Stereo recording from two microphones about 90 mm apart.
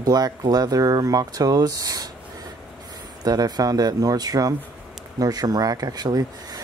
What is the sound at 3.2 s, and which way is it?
Speech, 45° right (ahead or behind).